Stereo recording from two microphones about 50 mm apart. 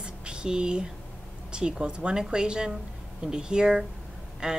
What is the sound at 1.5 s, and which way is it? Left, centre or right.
Speech, centre.